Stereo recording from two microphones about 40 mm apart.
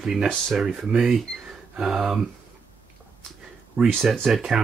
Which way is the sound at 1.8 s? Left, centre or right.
Centre.